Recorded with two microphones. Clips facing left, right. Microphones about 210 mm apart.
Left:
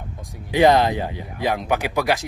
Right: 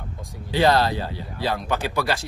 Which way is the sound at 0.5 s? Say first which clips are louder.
Left 4 dB; 20° left (ahead or behind).